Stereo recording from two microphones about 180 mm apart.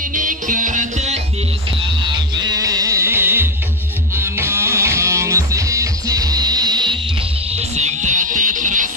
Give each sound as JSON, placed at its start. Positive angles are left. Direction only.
{"t": 0.1, "sound": "music", "side_deg": -45}
{"t": 2.3, "sound": "music", "side_deg": -20}
{"t": 7.5, "sound": "music", "side_deg": -40}